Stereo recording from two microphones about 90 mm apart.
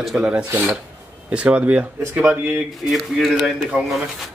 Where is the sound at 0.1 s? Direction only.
10° right (ahead or behind).